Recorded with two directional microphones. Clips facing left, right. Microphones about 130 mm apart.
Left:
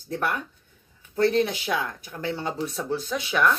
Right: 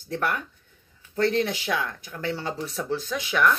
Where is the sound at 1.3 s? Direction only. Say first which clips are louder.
Left 1 dB; 25° left (ahead or behind).